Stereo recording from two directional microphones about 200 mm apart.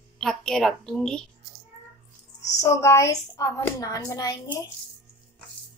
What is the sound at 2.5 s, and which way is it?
Speech, 15° left (ahead or behind).